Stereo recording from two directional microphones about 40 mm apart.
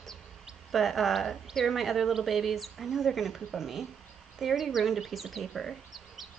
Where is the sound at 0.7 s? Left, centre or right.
Centre.